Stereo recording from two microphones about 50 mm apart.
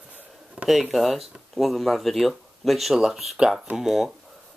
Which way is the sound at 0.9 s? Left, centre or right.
Centre.